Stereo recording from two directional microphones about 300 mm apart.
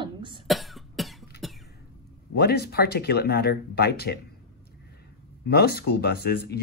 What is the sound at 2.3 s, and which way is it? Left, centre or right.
Speech, left.